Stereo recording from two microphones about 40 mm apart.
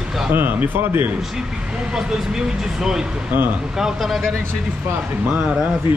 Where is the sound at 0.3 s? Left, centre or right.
Right.